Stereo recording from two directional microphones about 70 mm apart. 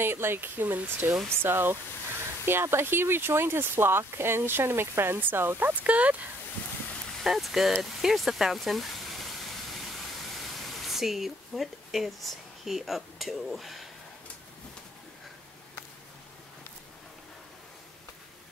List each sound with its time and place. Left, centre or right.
0.0 s speech: right
5.9 s speech: centre
7.2 s speech: centre
10.9 s speech: centre